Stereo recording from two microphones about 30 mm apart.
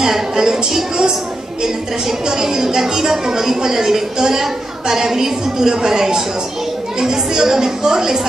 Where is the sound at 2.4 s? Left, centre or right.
Centre.